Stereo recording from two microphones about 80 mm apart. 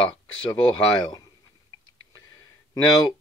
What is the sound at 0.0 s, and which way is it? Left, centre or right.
Speech, left.